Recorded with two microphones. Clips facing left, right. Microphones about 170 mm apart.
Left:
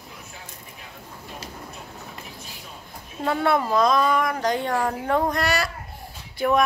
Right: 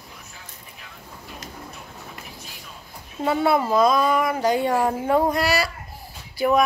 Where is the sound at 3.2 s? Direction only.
5° right (ahead or behind).